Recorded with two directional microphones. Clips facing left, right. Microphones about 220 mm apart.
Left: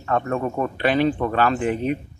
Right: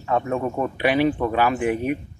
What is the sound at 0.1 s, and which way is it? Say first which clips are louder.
A man's voice: even; 10° right (ahead or behind).